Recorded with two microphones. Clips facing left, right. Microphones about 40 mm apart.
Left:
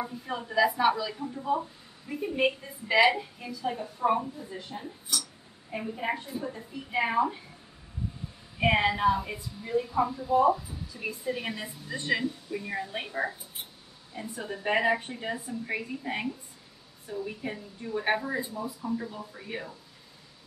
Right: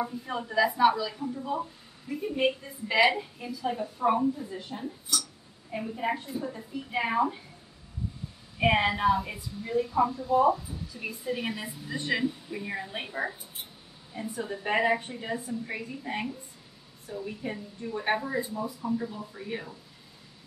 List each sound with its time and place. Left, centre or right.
0.0 s a woman's voice: centre
3.2 s a woman's voice: centre
8.5 s a woman's voice: centre
15.0 s speech: centre
18.5 s speech: centre
18.9 s a woman's voice: centre